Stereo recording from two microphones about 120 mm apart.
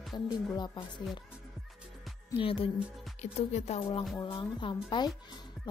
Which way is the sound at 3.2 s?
70° left (ahead or behind).